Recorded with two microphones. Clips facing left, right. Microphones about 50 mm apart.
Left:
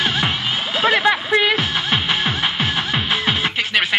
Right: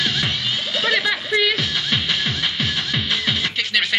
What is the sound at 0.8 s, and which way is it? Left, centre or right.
Music, left.